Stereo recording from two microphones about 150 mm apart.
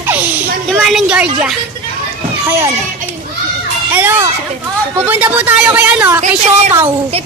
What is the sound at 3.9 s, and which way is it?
Speech, 15° right (ahead or behind).